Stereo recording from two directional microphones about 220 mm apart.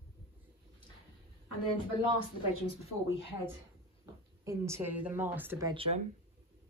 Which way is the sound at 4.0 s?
15° right (ahead or behind).